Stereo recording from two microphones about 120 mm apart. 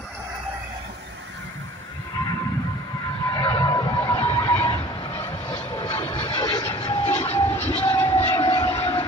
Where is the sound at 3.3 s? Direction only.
40° left (ahead or behind).